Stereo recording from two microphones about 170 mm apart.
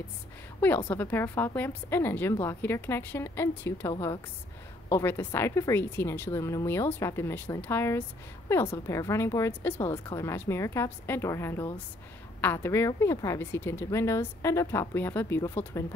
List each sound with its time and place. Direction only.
0.6 s a woman's voice: 10° left (ahead or behind)